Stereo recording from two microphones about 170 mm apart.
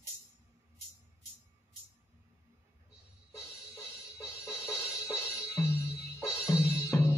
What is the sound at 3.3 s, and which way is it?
Music, 20° left (ahead or behind).